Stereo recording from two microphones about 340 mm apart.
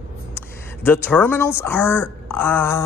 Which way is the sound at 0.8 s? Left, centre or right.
Centre.